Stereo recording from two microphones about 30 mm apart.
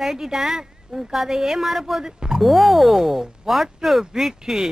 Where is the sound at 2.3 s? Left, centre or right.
Centre.